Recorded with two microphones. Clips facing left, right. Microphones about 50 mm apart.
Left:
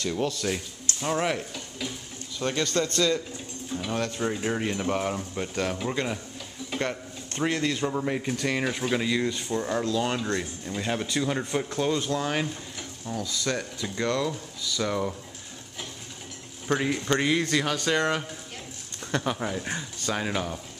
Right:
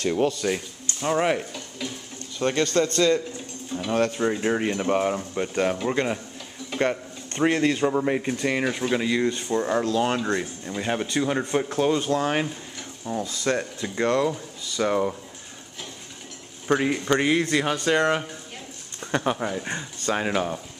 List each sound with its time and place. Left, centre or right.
0.0 s speech: right
16.6 s speech: centre
18.9 s a sound: centre
19.4 s speech: centre